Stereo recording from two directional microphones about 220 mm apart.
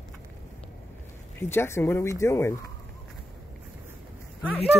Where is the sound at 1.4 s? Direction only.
10° left (ahead or behind).